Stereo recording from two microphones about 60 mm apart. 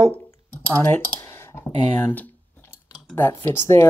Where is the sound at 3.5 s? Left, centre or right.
Left.